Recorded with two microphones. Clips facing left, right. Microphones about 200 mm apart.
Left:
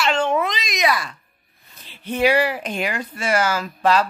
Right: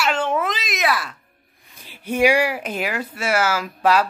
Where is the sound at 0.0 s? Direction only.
5° right (ahead or behind).